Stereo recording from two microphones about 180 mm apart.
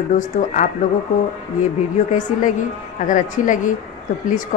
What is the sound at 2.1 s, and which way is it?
A woman's voice, 45° left (ahead or behind).